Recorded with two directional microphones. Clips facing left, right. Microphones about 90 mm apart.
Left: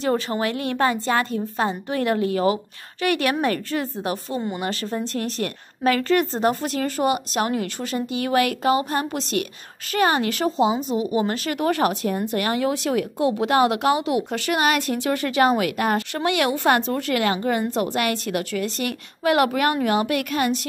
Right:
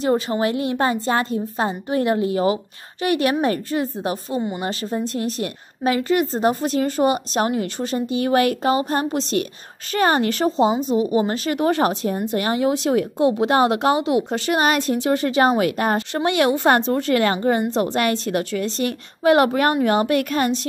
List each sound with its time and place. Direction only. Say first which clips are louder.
0.0 s a woman's voice: right 3 dB; 20° right (ahead or behind); by 20.6 s 40° right (ahead or behind)